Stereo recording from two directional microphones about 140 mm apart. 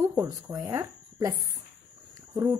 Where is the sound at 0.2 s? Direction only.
25° right (ahead or behind).